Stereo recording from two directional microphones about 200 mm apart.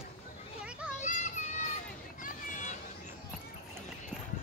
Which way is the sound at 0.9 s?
35° left (ahead or behind).